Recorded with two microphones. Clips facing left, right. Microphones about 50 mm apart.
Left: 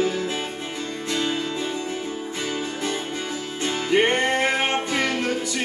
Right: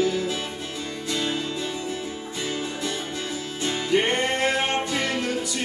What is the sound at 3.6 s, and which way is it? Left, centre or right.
Music, left.